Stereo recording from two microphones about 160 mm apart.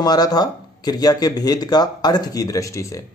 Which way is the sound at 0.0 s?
25° left (ahead or behind).